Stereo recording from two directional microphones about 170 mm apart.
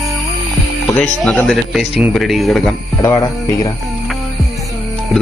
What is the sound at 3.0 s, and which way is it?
Speech, 20° left (ahead or behind).